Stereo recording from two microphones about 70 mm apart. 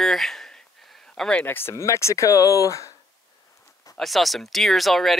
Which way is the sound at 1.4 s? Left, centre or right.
Left.